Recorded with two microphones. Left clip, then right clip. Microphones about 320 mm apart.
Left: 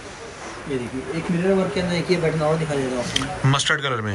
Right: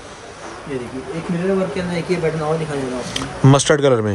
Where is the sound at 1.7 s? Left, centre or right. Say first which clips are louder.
Even; centre.